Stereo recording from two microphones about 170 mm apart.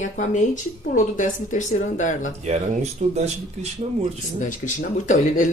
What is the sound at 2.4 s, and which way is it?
Speech, 40° right (ahead or behind).